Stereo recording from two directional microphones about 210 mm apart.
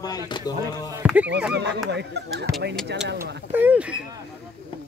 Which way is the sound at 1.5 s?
55° right (ahead or behind).